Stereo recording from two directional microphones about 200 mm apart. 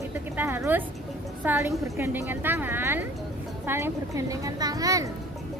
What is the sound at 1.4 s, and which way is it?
A woman's voice, 10° right (ahead or behind).